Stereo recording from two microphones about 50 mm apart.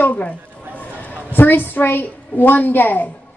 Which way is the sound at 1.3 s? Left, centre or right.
Left.